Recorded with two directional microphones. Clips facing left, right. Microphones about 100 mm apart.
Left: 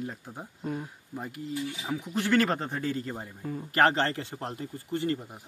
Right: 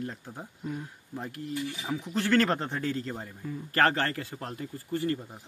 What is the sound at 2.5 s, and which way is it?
Speech, 5° left (ahead or behind).